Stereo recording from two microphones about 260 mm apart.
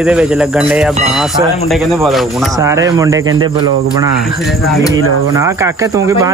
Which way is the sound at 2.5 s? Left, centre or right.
Centre.